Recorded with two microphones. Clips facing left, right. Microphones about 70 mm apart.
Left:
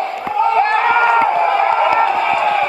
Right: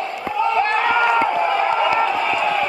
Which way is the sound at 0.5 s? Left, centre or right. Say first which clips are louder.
Left 4 dB; left.